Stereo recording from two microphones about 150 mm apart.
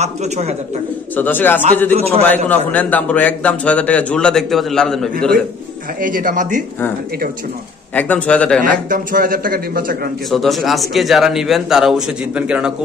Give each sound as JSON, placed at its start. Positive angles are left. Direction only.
{"t": 0.0, "sound": "speech", "side_deg": -45}
{"t": 1.1, "sound": "a man's voice", "side_deg": 10}
{"t": 2.0, "sound": "speech", "side_deg": -45}
{"t": 2.2, "sound": "a man's voice", "side_deg": 10}
{"t": 5.9, "sound": "speech", "side_deg": -65}
{"t": 7.9, "sound": "a man's voice", "side_deg": 10}
{"t": 8.8, "sound": "speech", "side_deg": -65}
{"t": 10.3, "sound": "a man's voice", "side_deg": 0}